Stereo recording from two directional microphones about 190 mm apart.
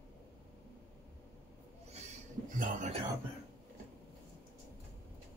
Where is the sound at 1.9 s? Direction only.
35° right (ahead or behind).